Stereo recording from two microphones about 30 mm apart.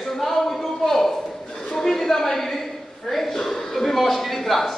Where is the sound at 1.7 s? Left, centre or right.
Centre.